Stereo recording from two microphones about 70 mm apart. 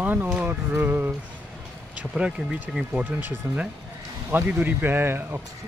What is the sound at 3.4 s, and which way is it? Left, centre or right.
Speech, right.